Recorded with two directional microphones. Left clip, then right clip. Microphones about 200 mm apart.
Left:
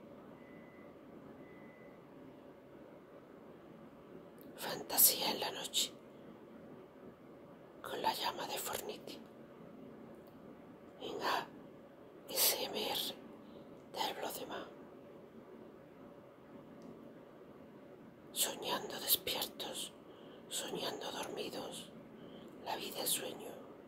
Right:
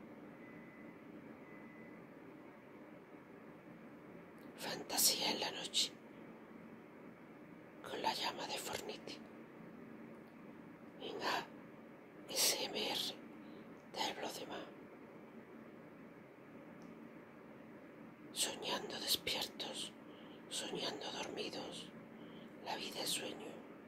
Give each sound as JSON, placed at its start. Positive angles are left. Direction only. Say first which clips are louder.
{"t": 4.6, "sound": "speech", "louder": "left 2 dB", "side_deg": 5}
{"t": 7.8, "sound": "whispering", "louder": "left 3 dB", "side_deg": 5}
{"t": 11.0, "sound": "a sound", "louder": "left 3 dB", "side_deg": 5}
{"t": 12.3, "sound": "whispering", "louder": "left 1 dB", "side_deg": 5}
{"t": 18.3, "sound": "whispering", "louder": "left 2 dB", "side_deg": 5}